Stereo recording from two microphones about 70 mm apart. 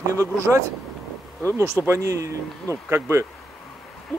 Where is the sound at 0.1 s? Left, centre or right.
Right.